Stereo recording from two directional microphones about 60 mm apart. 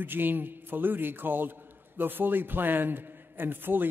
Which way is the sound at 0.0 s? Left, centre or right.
Right.